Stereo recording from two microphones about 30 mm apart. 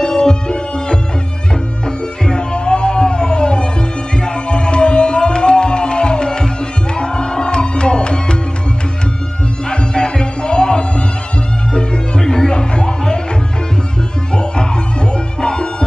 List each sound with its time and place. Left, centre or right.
0.0 s music: left
9.7 s music: left
14.3 s music: left